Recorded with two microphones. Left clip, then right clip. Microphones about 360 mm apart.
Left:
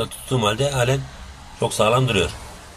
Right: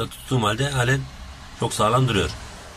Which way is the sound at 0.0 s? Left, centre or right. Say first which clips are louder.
Left 2 dB; centre.